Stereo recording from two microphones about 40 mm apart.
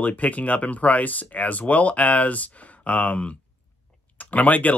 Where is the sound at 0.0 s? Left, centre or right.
Left.